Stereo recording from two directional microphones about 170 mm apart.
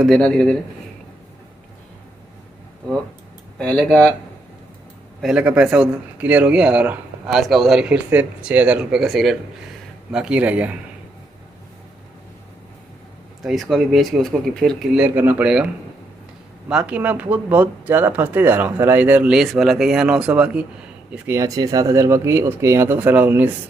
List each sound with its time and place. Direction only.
0.0 s speech: 5° left (ahead or behind)
3.5 s speech: 5° left (ahead or behind)
5.2 s speech: 5° right (ahead or behind)
13.4 s speech: centre (ahead or behind)
15.0 s speech: 10° right (ahead or behind)